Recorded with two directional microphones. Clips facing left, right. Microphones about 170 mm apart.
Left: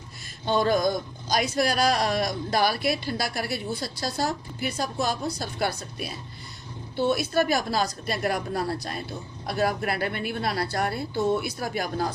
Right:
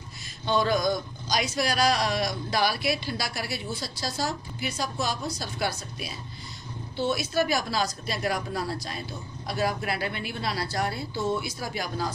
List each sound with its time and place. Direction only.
0.5 s a man's voice: 50° left (ahead or behind)